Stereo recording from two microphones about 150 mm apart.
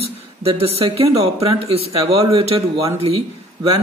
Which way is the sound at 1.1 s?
40° right (ahead or behind).